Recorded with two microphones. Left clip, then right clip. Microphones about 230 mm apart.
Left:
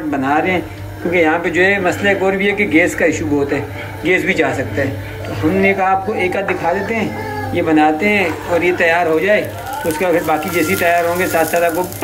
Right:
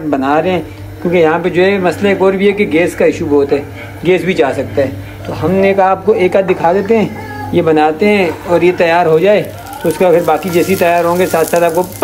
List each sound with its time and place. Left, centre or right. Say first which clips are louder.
0.1 s speech: right 4 dB; centre
5.6 s speech: right 4 dB; centre